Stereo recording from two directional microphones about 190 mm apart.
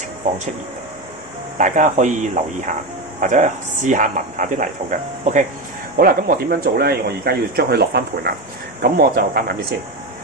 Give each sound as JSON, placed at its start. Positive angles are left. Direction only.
{"t": 1.6, "sound": "speech", "side_deg": -40}
{"t": 5.9, "sound": "speech", "side_deg": -50}